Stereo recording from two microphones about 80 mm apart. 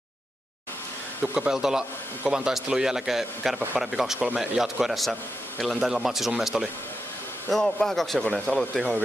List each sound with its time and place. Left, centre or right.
1.2 s a man's voice: centre